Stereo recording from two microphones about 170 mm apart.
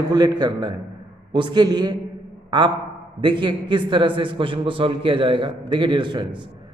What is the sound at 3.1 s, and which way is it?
A man's voice, 30° right (ahead or behind).